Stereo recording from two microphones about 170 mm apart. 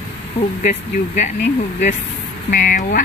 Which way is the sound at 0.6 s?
45° left (ahead or behind).